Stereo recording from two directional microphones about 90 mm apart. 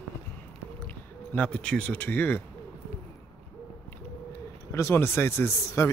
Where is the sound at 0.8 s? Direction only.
15° left (ahead or behind).